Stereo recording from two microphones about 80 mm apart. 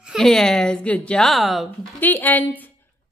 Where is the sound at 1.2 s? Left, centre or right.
Centre.